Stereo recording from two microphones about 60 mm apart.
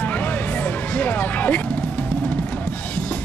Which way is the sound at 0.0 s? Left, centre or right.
Left.